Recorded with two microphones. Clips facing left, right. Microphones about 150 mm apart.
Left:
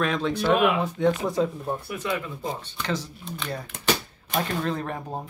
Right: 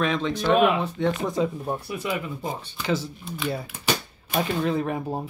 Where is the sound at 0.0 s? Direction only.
5° left (ahead or behind).